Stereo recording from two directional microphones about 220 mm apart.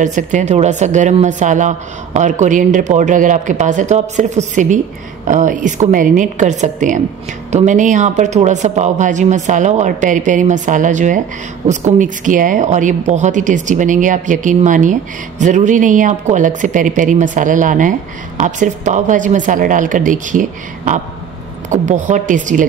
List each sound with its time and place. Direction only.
0.0 s speech: 35° right (ahead or behind)